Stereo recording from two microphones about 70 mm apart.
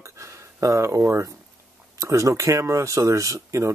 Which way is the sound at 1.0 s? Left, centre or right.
Right.